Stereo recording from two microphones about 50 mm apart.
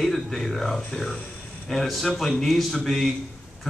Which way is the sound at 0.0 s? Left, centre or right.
Centre.